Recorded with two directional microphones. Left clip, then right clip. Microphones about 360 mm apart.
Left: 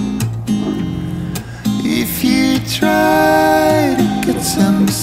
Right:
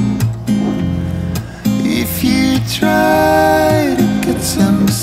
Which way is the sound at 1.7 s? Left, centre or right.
Centre.